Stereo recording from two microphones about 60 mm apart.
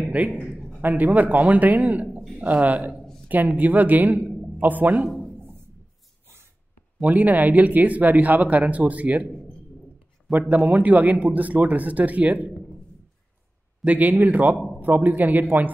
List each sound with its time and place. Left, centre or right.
0.2 s speech: right
7.0 s speech: right
10.5 s speech: right
13.8 s speech: right